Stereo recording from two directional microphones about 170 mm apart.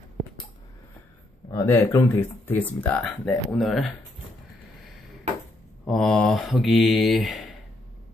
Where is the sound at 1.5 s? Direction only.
20° left (ahead or behind); by 4.0 s centre (ahead or behind).